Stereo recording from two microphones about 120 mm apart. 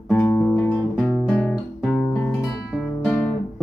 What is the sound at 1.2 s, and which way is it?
Guitar, 10° left (ahead or behind).